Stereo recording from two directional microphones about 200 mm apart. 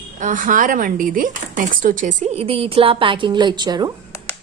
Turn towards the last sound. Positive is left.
turn(degrees=-20)  # may be behind; listen again after turning